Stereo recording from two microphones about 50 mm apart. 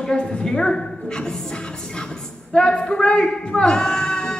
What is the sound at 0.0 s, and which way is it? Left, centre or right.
Speech, centre.